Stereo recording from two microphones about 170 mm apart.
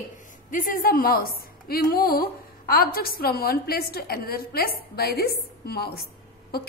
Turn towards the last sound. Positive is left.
turn(degrees=65)  # may be behind; listen again after turning